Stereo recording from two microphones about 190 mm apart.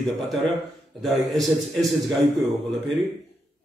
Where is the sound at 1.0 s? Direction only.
Centre (ahead or behind).